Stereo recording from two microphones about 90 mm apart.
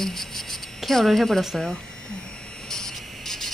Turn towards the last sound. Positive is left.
turn(degrees=5)  # may be behind; listen again after turning